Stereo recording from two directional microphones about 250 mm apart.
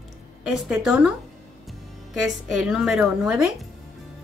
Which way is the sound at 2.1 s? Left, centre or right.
Centre.